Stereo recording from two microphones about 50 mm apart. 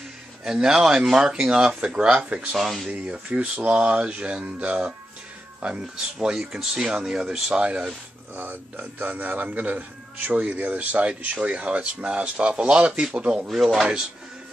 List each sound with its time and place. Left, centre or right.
0.4 s a man's voice: centre
2.2 s speech: right
2.5 s speech: centre
2.9 s a man's voice: right
6.1 s speech: centre
8.4 s a man's voice: right